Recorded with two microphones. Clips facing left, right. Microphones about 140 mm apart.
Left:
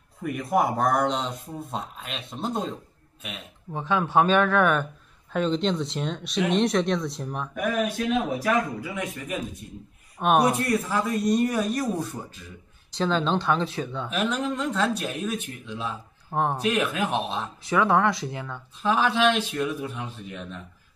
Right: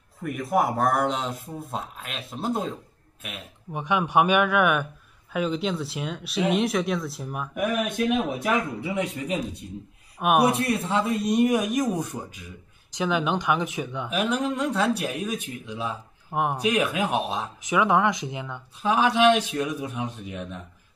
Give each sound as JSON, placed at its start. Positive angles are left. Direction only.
{"t": 0.2, "sound": "speech", "side_deg": 0}
{"t": 3.7, "sound": "speech", "side_deg": -15}
{"t": 7.5, "sound": "speech", "side_deg": -20}
{"t": 10.1, "sound": "speech", "side_deg": -10}
{"t": 10.8, "sound": "speech", "side_deg": -25}